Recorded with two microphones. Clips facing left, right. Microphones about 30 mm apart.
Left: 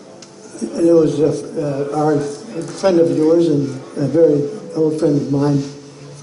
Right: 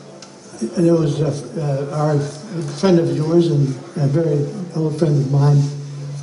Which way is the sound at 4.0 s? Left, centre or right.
Centre.